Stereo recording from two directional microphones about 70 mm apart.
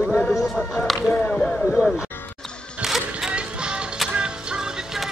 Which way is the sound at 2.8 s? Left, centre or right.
Centre.